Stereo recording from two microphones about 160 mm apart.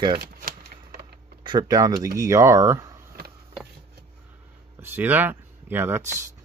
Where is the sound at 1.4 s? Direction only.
25° right (ahead or behind).